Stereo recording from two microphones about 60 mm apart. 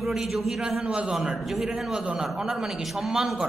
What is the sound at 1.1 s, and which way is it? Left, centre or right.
A man's voice, centre.